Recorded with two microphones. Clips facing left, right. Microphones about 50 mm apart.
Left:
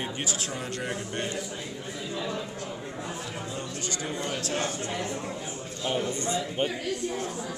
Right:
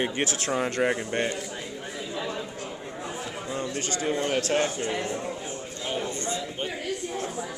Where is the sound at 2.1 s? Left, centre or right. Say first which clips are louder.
Even; centre.